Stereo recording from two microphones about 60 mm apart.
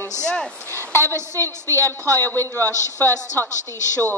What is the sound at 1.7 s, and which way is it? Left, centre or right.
A man's voice, left.